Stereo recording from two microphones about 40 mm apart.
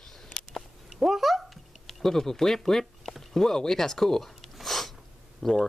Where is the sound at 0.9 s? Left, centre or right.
Centre.